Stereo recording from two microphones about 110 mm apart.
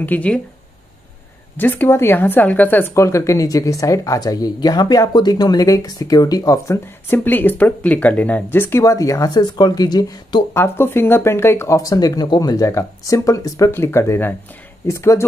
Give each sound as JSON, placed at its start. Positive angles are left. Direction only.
{"t": 0.0, "sound": "speech", "side_deg": 15}
{"t": 1.6, "sound": "speech", "side_deg": 15}
{"t": 10.5, "sound": "speech", "side_deg": 20}